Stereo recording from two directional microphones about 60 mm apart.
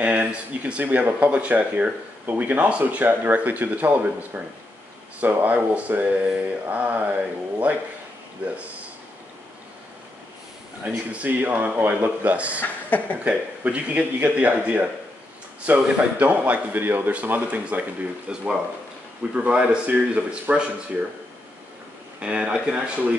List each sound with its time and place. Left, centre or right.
0.0 s speech: right
10.8 s speech: right
12.6 s speech: left
13.2 s speech: right
22.2 s speech: centre